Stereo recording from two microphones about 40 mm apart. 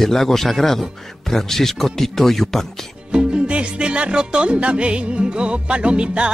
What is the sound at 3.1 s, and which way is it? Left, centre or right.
Music, right.